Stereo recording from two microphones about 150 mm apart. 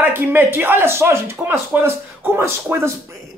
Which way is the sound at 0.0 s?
15° right (ahead or behind).